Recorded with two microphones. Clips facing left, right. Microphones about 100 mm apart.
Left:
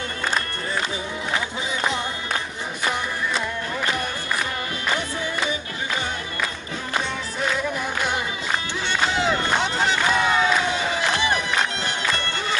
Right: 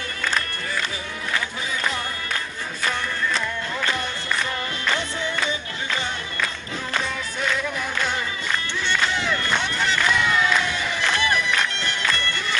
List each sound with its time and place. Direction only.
1.3 s music: 25° left (ahead or behind)
8.0 s music: 15° left (ahead or behind)